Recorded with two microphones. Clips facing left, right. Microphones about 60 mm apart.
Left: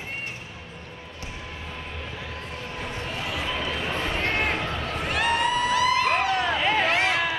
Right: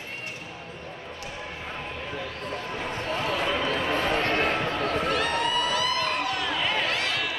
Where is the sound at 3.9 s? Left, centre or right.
Right.